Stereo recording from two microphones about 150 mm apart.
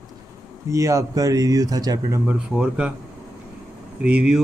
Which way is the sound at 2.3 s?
5° right (ahead or behind).